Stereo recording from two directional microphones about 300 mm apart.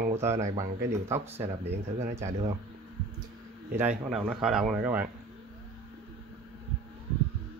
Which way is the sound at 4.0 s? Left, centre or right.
Centre.